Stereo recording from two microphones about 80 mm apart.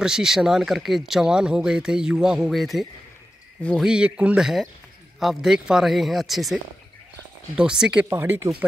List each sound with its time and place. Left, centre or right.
0.0 s speech: centre
3.8 s speech: centre
8.1 s speech: right